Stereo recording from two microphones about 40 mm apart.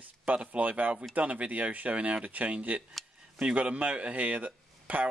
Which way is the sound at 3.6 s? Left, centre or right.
Right.